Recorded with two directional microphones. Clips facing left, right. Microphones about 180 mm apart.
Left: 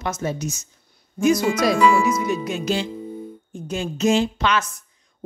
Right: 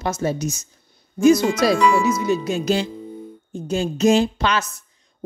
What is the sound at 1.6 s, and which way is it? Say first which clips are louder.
Speech: even; 35° right (ahead or behind).